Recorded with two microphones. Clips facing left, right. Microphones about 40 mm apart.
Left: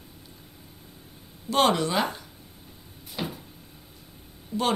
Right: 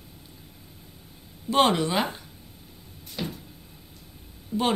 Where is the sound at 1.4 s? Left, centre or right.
Centre.